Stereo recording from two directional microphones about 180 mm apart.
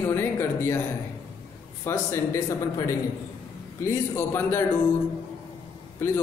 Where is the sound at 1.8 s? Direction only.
15° left (ahead or behind).